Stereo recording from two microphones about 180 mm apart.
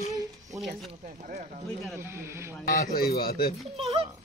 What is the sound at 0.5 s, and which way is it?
Speech, centre (ahead or behind).